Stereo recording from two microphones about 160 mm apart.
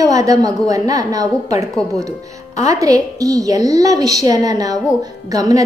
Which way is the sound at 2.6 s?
20° right (ahead or behind).